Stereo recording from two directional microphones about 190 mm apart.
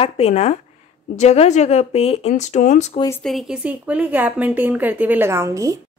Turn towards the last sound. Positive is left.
turn(degrees=-15)  # may be behind; listen again after turning